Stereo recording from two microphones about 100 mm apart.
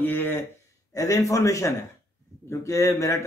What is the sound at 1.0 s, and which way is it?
A man's voice, 35° left (ahead or behind).